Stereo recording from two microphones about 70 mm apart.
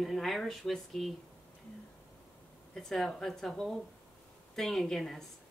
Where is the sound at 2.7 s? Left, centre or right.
Centre.